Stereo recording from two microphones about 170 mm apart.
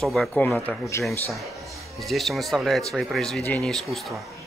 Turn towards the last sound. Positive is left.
turn(degrees=0)  # may be behind; listen again after turning